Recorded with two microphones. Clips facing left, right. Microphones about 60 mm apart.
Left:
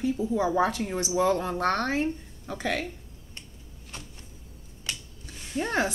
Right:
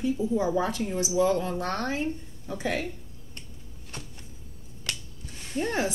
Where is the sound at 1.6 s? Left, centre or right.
Left.